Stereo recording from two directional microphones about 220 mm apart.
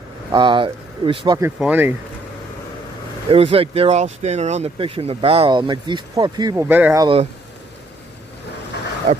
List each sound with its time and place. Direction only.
0.3 s speech: 20° right (ahead or behind)
1.6 s speech: 10° right (ahead or behind)
3.3 s speech: 25° right (ahead or behind); by 7.1 s 10° right (ahead or behind)
9.1 s speech: 35° right (ahead or behind)